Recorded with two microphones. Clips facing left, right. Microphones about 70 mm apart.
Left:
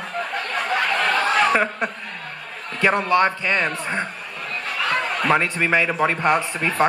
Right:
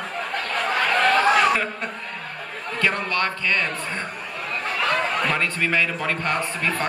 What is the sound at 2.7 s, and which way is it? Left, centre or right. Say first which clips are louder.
A man's voice: left 6 dB; centre.